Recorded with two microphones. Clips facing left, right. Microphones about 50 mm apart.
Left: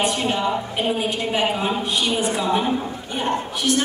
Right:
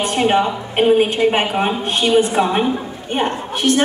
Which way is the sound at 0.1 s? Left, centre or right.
Right.